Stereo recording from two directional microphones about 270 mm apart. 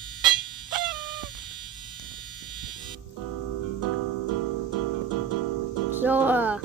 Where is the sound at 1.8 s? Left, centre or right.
Centre.